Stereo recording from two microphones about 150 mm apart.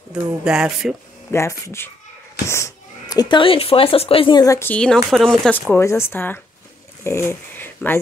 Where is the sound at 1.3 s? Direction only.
20° left (ahead or behind).